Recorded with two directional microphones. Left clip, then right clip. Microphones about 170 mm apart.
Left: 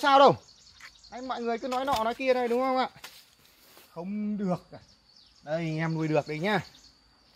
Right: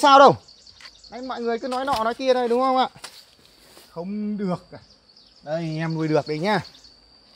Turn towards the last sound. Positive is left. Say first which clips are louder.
# right 6 dB
turn(degrees=-35)  # may be behind; listen again after turning